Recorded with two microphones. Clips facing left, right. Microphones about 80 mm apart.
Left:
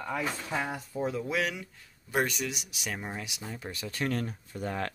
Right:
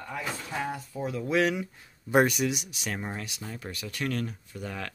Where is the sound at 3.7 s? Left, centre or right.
Left.